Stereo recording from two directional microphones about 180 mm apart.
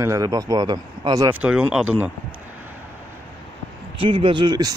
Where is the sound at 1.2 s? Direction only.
5° right (ahead or behind).